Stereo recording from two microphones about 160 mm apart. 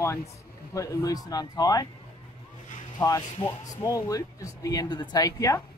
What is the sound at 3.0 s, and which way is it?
Speech, 20° left (ahead or behind).